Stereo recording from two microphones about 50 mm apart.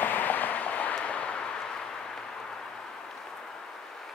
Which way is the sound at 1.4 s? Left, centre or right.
Centre.